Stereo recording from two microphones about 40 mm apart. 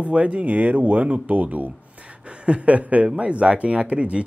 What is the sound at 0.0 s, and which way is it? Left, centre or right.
Speech, right.